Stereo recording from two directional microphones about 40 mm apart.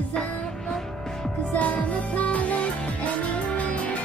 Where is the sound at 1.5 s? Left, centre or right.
Left.